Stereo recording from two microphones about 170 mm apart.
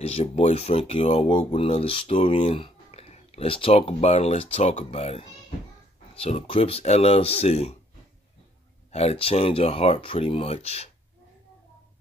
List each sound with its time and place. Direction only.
0.0 s speech: 35° left (ahead or behind)
8.9 s speech: 35° left (ahead or behind)